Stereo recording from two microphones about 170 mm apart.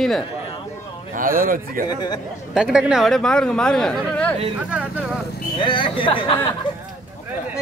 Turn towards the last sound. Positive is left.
turn(degrees=30)  # may be behind; listen again after turning